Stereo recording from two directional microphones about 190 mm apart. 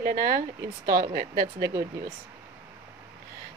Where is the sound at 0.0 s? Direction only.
55° right (ahead or behind).